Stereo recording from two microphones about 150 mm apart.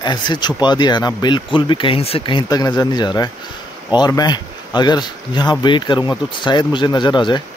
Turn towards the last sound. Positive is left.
turn(degrees=30)  # may be behind; listen again after turning